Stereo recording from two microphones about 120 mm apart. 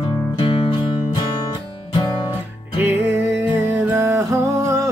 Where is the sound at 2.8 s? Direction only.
20° right (ahead or behind).